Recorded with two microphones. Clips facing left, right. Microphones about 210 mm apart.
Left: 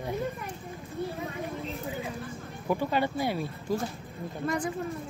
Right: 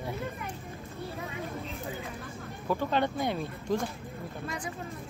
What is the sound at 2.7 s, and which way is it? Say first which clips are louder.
Speech: left 1 dB; 10° left (ahead or behind).